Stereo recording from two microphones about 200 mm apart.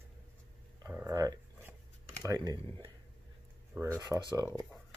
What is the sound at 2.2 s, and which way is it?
Speech, 20° right (ahead or behind).